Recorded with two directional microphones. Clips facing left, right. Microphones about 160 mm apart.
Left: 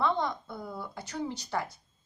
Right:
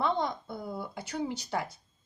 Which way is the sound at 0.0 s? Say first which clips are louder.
Left 1 dB; 20° right (ahead or behind).